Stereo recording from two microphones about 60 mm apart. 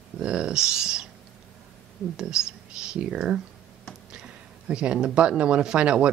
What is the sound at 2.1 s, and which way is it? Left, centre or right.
Speech, centre.